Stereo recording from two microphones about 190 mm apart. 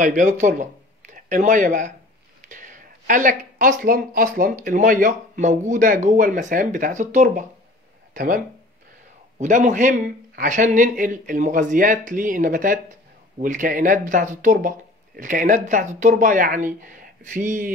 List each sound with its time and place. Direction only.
0.0 s speech: 45° right (ahead or behind)
2.5 s a sound: 45° right (ahead or behind)
3.8 s speech: 50° right (ahead or behind)
9.4 s speech: 40° right (ahead or behind)